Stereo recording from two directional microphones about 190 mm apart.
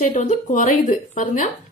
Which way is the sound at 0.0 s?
40° left (ahead or behind).